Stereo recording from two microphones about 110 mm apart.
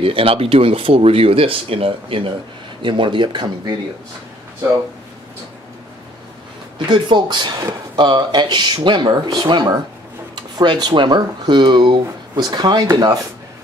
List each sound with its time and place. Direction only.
0.0 s speech: 55° right (ahead or behind)
6.9 s speech: 45° right (ahead or behind)